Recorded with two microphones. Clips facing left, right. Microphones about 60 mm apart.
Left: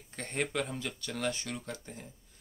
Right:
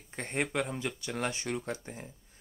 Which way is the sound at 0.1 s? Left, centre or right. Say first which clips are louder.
Right 2 dB; right.